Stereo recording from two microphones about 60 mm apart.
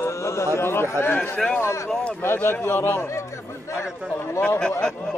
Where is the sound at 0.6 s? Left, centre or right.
Left.